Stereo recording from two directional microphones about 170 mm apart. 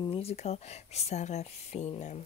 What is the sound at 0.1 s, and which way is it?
Speech, 35° left (ahead or behind).